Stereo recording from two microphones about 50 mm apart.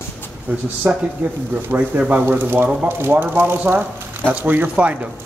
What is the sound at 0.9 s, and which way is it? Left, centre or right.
Speech, right.